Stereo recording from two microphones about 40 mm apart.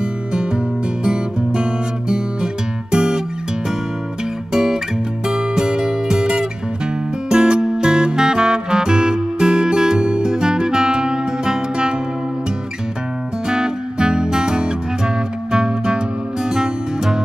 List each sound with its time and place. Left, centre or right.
1.0 s music: right
4.5 s guitar: centre
5.3 s music: centre
13.5 s music: centre